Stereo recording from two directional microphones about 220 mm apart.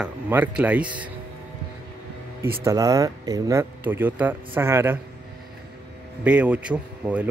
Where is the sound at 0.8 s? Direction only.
20° right (ahead or behind).